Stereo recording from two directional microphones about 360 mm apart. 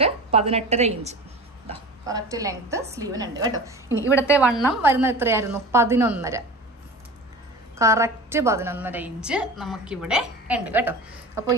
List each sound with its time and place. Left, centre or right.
0.0 s a woman's voice: centre
4.0 s a woman's voice: centre
7.8 s a woman's voice: centre